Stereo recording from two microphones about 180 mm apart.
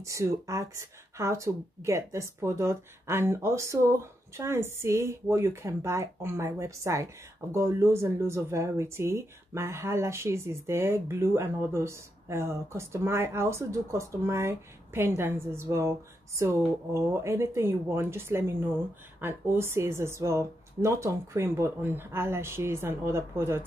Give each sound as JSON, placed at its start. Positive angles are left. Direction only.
{"t": 0.0, "sound": "speech", "side_deg": -15}